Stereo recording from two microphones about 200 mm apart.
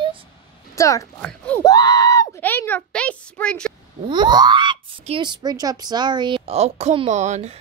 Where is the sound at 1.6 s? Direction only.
15° left (ahead or behind).